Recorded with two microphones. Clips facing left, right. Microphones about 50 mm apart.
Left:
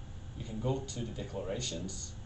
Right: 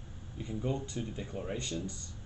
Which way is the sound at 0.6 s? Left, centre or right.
Right.